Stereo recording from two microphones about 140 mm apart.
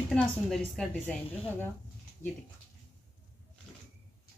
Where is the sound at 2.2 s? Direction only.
60° left (ahead or behind).